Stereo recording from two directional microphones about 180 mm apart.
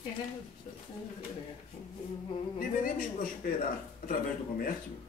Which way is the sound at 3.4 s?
50° left (ahead or behind).